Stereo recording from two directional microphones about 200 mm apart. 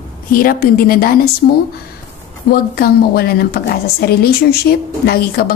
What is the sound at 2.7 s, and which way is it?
Speech, 50° left (ahead or behind).